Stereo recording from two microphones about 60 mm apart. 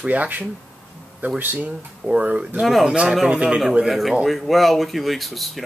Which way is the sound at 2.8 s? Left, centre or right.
Centre.